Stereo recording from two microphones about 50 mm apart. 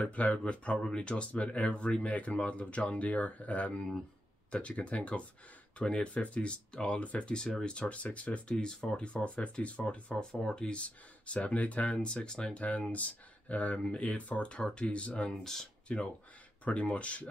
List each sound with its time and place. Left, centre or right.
0.0 s speech: left
10.1 s speech: centre